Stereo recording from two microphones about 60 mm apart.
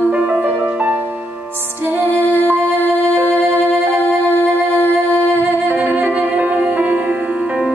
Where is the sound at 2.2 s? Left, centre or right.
Left.